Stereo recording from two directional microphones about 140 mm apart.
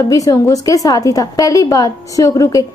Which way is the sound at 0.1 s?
25° left (ahead or behind).